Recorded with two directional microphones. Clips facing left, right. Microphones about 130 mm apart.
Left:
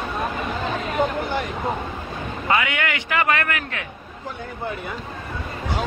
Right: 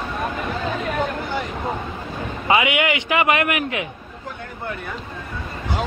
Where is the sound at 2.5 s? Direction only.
15° right (ahead or behind).